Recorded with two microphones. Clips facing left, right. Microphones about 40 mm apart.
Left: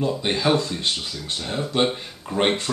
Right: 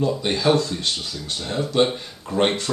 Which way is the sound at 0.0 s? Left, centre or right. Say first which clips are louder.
Right 1 dB; centre.